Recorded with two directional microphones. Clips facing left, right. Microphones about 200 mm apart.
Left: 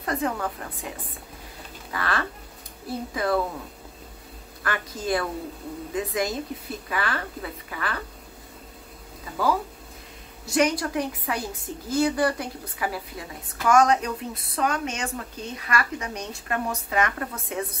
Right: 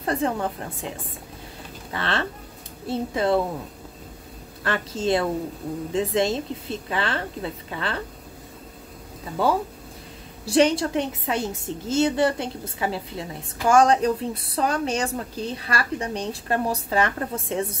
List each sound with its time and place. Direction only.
0.0 s a woman's voice: 30° right (ahead or behind)
4.6 s a woman's voice: 25° right (ahead or behind)
10.4 s a woman's voice: 30° right (ahead or behind)